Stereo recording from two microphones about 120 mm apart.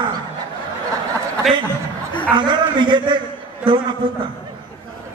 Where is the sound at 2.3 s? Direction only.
40° right (ahead or behind).